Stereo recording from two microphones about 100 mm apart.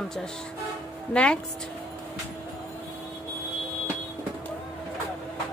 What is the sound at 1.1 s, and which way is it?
Speech, 10° left (ahead or behind).